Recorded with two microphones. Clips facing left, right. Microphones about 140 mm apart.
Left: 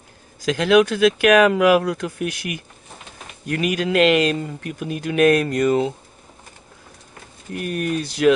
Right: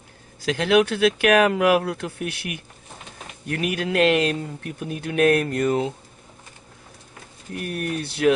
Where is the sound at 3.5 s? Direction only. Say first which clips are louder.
Left 4 dB; 90° left.